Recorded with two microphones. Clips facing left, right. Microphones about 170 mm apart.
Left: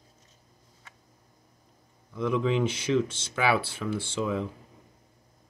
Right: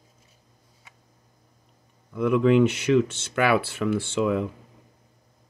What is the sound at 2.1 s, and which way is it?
Speech, 60° right (ahead or behind).